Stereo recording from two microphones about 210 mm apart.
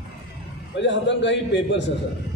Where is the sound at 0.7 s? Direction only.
60° left (ahead or behind).